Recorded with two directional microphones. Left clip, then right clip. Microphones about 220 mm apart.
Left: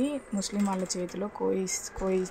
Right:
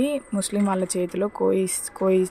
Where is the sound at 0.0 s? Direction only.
20° right (ahead or behind).